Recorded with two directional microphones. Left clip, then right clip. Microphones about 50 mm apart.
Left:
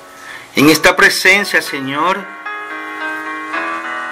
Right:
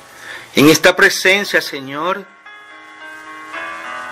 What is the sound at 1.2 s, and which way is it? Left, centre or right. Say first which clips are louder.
Speech: left 2 dB; right.